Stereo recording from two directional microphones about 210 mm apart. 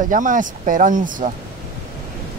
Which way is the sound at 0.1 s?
40° right (ahead or behind).